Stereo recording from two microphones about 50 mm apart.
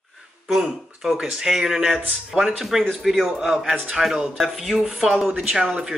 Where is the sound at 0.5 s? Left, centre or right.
Centre.